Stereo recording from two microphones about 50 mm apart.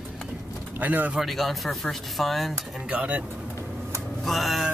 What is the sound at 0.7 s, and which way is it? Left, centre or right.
Speech, right.